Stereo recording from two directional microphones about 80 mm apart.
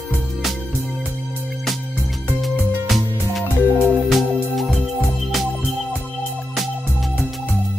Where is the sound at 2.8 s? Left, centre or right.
Centre.